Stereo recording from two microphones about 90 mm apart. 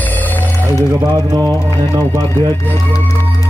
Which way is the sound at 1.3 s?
30° right (ahead or behind).